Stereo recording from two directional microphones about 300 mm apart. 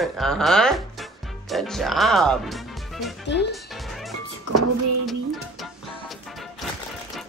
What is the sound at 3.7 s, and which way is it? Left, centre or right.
Music, centre.